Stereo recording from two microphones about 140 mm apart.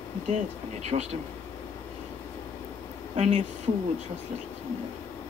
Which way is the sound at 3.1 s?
50° right (ahead or behind).